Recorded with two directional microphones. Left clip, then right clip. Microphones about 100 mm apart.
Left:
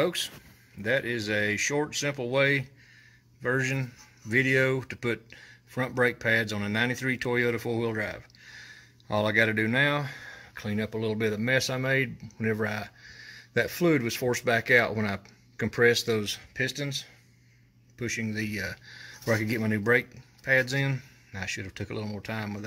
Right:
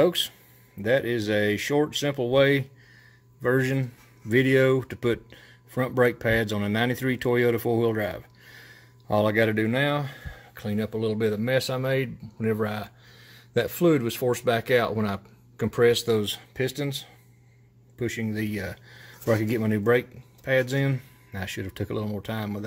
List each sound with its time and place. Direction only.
0.0 s speech: 55° right (ahead or behind)
3.4 s speech: 65° right (ahead or behind)
3.7 s speech: 45° right (ahead or behind)
9.7 s speech: 20° right (ahead or behind)
16.2 s speech: 55° right (ahead or behind)
17.9 s speech: 45° right (ahead or behind)